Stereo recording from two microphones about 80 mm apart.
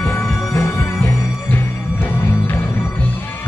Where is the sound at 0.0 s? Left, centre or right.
Left.